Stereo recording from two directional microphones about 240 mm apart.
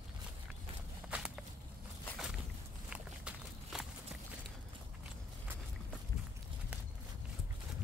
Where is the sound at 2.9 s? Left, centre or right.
Centre.